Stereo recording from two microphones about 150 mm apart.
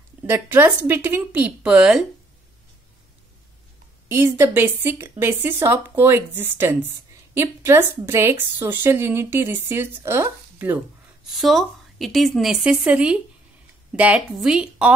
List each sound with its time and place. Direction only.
0.3 s a woman's voice: 15° right (ahead or behind)
4.1 s a woman's voice: 15° right (ahead or behind)
11.3 s a woman's voice: centre (ahead or behind)